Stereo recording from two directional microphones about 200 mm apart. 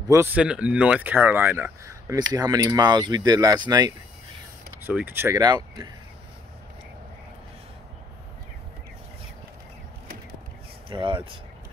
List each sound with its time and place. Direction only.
0.1 s speech: 10° right (ahead or behind)
4.8 s speech: 10° right (ahead or behind)
10.9 s speech: 25° right (ahead or behind)